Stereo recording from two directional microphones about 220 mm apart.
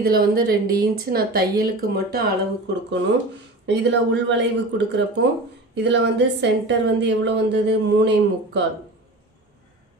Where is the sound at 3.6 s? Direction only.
50° right (ahead or behind).